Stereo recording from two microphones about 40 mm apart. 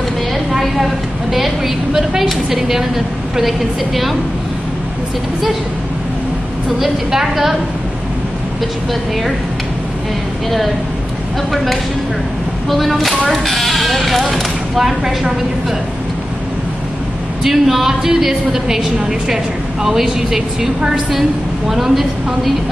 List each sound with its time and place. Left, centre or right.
0.5 s a sound: centre
2.5 s a woman's voice: centre
6.8 s a woman's voice: centre
11.5 s a woman's voice: centre
17.4 s a woman's voice: centre